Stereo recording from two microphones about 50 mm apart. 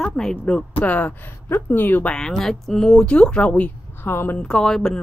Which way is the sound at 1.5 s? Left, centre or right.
Left.